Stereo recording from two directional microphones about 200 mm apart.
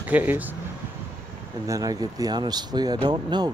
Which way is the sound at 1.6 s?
15° right (ahead or behind).